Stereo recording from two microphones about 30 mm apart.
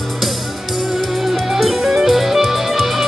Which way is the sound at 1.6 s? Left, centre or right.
Centre.